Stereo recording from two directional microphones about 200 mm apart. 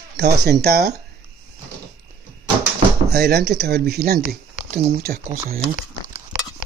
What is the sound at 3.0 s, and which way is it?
Speech, 55° right (ahead or behind).